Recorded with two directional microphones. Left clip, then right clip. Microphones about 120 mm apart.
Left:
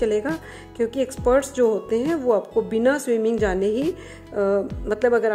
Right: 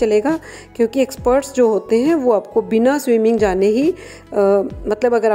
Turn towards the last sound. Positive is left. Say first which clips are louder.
# right 4 dB
turn(degrees=-35)  # may be behind; listen again after turning